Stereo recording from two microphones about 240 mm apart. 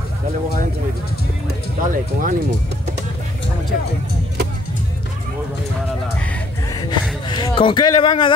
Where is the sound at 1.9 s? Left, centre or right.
Right.